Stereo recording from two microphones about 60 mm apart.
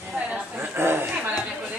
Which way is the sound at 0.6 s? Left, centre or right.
Right.